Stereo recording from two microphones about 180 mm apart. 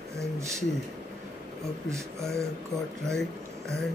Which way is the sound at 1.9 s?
15° right (ahead or behind).